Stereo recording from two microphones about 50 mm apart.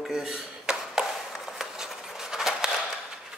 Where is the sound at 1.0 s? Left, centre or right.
Centre.